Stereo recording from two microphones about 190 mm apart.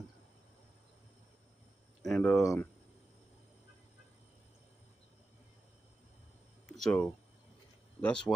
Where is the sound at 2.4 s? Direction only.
15° left (ahead or behind).